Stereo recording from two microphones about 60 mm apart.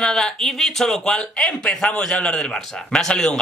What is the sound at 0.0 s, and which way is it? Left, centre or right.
Speech, centre.